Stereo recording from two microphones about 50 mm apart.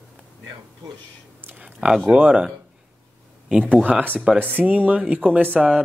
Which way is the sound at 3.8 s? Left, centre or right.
Right.